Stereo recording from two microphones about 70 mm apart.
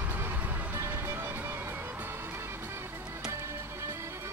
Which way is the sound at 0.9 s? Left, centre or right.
Right.